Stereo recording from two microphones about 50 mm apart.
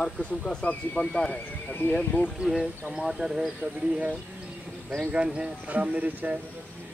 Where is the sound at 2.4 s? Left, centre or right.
Right.